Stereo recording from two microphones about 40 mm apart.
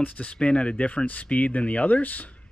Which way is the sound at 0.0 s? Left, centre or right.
Left.